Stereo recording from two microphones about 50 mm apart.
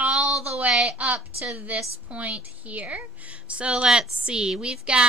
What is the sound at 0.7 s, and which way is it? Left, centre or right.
A woman's voice, right.